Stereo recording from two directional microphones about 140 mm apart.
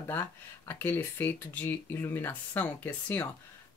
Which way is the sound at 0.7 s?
15° left (ahead or behind).